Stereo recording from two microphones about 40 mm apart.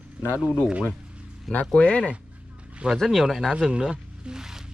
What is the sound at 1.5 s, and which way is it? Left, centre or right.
Speech, left.